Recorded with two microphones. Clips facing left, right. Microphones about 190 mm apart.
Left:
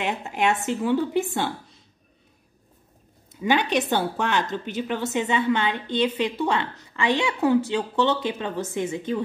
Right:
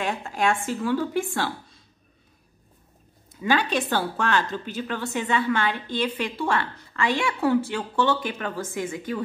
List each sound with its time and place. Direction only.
0.0 s a woman's voice: 20° left (ahead or behind)
3.3 s a woman's voice: 20° left (ahead or behind)